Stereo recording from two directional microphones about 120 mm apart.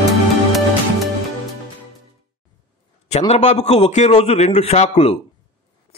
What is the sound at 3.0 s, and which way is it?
A man's voice, 65° left (ahead or behind).